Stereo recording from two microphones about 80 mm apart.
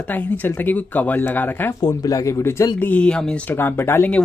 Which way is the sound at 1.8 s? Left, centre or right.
Left.